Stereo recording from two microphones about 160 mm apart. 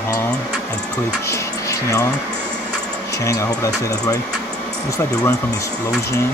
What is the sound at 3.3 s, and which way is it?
Speech, 20° left (ahead or behind).